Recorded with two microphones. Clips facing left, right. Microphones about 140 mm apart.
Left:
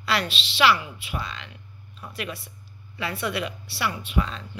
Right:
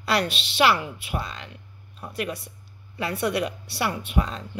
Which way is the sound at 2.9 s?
40° right (ahead or behind).